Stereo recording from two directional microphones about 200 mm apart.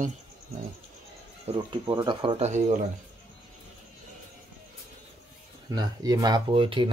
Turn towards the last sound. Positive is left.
turn(degrees=-25)  # may be behind; listen again after turning